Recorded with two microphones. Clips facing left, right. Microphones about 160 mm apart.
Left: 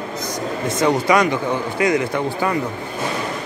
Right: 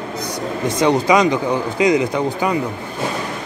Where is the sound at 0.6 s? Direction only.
20° right (ahead or behind).